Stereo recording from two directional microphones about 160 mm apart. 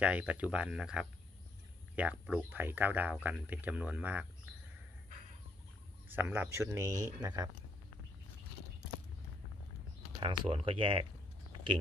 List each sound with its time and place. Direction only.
0.0 s speech: 10° right (ahead or behind)
6.1 s speech: 15° right (ahead or behind)
10.2 s speech: 35° right (ahead or behind)